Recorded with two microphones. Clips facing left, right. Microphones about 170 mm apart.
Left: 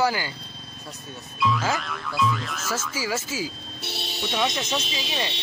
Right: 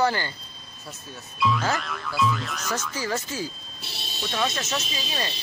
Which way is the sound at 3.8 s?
70° left (ahead or behind).